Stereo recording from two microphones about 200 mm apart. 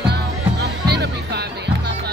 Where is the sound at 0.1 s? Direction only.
55° right (ahead or behind).